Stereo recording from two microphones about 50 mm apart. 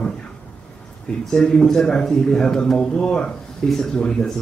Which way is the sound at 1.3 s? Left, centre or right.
Centre.